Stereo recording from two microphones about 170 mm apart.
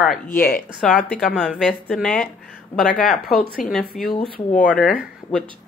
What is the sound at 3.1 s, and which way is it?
Speech, 65° left (ahead or behind).